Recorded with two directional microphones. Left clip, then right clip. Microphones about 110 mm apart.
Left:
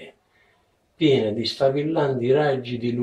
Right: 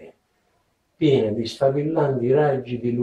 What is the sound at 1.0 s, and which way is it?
Speech, 35° left (ahead or behind).